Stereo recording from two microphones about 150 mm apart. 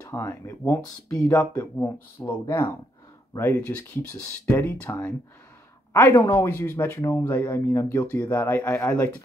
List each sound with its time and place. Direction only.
0.0 s speech: 15° left (ahead or behind)
6.1 s speech: 20° left (ahead or behind)